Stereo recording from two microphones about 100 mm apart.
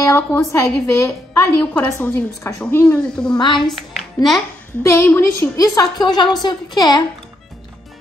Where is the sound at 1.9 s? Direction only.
25° left (ahead or behind).